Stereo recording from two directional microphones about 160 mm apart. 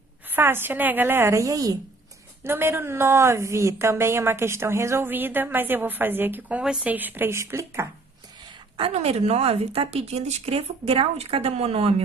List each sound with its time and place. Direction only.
0.3 s speech: 15° right (ahead or behind)
8.7 s speech: 35° right (ahead or behind)